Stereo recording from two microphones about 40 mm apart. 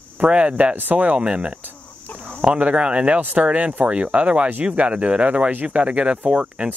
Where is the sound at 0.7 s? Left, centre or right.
Right.